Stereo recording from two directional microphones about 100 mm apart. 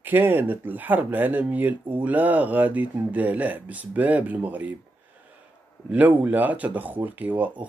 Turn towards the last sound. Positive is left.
turn(degrees=-15)  # may be behind; listen again after turning